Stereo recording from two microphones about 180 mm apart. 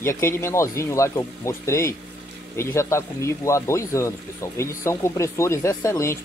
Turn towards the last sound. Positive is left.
turn(degrees=15)  # may be behind; listen again after turning